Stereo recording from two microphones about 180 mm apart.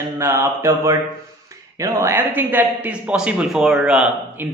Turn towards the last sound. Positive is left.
turn(degrees=-5)  # may be behind; listen again after turning